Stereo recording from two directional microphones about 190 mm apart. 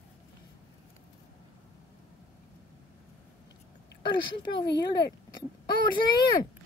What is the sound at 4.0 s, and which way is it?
Speech, 25° left (ahead or behind).